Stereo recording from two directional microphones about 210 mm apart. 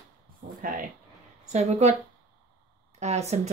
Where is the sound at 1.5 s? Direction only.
30° right (ahead or behind).